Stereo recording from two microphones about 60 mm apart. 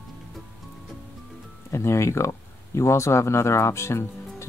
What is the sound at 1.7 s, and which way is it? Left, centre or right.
Speech, left.